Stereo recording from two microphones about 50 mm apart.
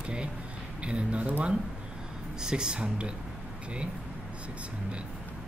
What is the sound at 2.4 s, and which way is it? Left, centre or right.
Speech, centre.